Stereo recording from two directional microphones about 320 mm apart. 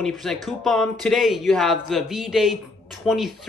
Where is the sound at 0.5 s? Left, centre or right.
Centre.